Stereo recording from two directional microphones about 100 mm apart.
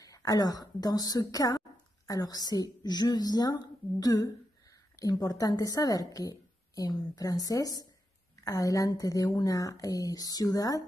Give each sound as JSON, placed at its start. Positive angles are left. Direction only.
{"t": 0.0, "sound": "speech", "side_deg": 35}